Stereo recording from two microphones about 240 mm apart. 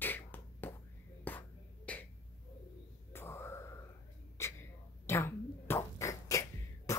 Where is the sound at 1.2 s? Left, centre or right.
Centre.